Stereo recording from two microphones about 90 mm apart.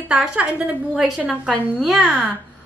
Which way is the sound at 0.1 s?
10° right (ahead or behind).